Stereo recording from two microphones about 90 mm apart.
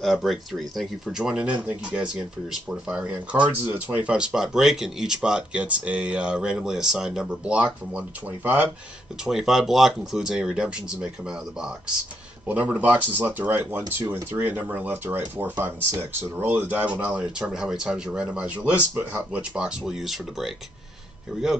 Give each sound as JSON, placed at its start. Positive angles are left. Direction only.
{"t": 0.0, "sound": "speech", "side_deg": 0}
{"t": 9.2, "sound": "speech", "side_deg": -5}
{"t": 12.4, "sound": "speech", "side_deg": -15}
{"t": 19.9, "sound": "speech", "side_deg": -5}